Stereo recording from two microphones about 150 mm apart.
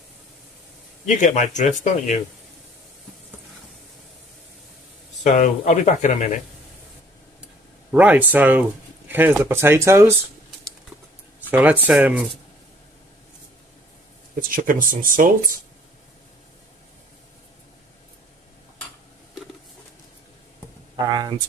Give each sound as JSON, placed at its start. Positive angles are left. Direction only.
{"t": 1.0, "sound": "speech", "side_deg": 60}
{"t": 5.2, "sound": "speech", "side_deg": 55}
{"t": 7.9, "sound": "speech", "side_deg": -10}
{"t": 11.5, "sound": "speech", "side_deg": -10}
{"t": 14.5, "sound": "speech", "side_deg": -65}
{"t": 20.9, "sound": "speech", "side_deg": -30}